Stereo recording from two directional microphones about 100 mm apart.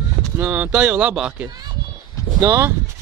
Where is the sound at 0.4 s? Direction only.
15° right (ahead or behind).